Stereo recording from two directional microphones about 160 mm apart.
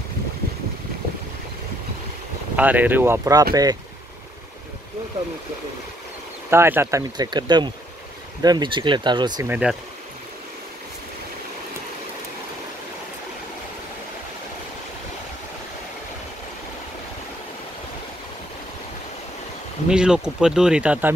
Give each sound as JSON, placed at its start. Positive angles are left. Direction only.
{"t": 2.5, "sound": "speech", "side_deg": -10}
{"t": 6.5, "sound": "speech", "side_deg": -15}
{"t": 9.5, "sound": "speech", "side_deg": -5}
{"t": 19.9, "sound": "speech", "side_deg": -5}